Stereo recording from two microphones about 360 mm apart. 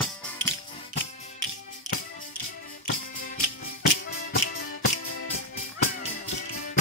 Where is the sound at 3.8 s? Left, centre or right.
Left.